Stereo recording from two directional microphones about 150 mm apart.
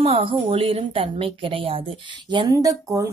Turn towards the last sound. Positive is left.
turn(degrees=-20)  # may be behind; listen again after turning